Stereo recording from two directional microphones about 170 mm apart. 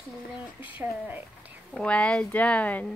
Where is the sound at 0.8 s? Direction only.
10° right (ahead or behind).